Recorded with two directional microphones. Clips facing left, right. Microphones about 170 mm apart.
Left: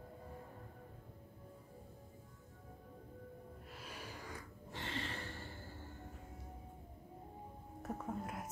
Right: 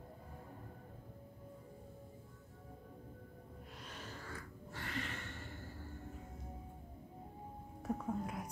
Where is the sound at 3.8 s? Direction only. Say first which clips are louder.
Left 1 dB; 10° left (ahead or behind); by 5.6 s 30° left (ahead or behind).